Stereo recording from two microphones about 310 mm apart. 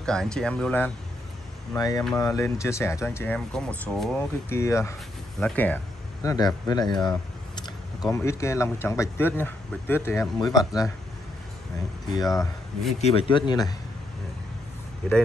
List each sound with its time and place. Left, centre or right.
0.0 s speech: centre
12.1 s speech: centre